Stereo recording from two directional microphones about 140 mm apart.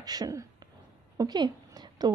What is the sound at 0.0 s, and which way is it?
A woman's voice, 30° right (ahead or behind).